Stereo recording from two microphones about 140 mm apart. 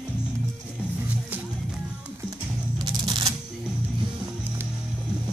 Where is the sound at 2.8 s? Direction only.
30° right (ahead or behind).